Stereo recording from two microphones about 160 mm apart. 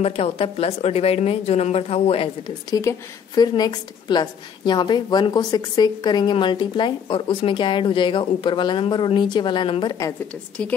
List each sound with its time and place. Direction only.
0.0 s speech: 40° left (ahead or behind)
2.7 s a woman's voice: 20° left (ahead or behind)
10.6 s speech: 5° left (ahead or behind)